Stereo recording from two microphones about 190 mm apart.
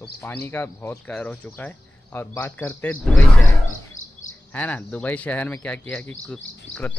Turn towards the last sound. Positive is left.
turn(degrees=5)  # may be behind; listen again after turning